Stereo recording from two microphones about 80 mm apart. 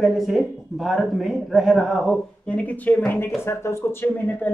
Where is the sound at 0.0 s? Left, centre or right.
Centre.